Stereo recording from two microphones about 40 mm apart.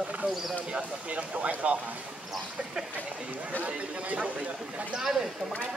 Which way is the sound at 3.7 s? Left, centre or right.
Right.